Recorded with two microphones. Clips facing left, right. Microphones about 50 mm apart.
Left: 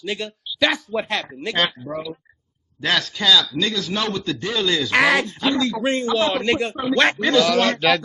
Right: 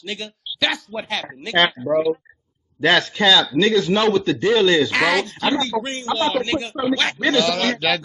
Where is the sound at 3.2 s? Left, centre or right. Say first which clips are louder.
Right 3 dB; centre.